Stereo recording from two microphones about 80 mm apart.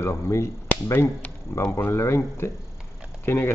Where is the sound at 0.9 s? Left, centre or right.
Left.